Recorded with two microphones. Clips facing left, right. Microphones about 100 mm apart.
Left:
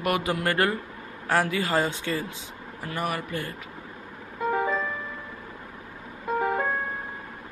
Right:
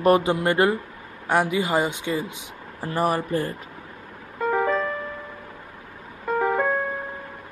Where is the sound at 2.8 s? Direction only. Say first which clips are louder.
Right 7 dB; 35° right (ahead or behind).